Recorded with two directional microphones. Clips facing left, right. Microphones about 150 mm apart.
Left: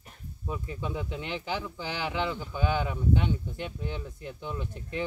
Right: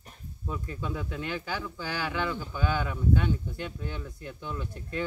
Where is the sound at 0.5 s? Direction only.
20° left (ahead or behind).